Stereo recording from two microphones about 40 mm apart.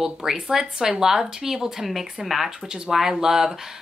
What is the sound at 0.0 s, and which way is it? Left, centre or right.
A woman's voice, centre.